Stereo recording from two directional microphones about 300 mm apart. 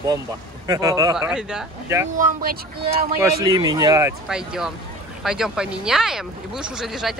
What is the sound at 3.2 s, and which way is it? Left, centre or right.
Speech, centre.